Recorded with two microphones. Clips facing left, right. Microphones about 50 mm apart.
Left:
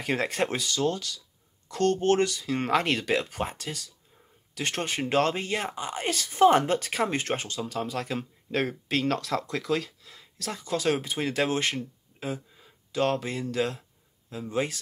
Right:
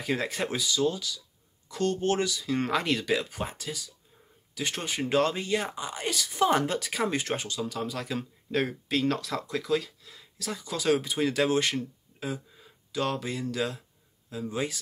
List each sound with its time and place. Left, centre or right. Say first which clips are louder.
0.0 s speech: left 2 dB; left
12.9 s speech: left 3 dB; left